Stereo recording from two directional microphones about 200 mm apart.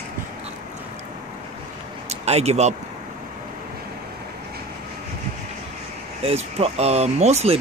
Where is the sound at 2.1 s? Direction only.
30° right (ahead or behind).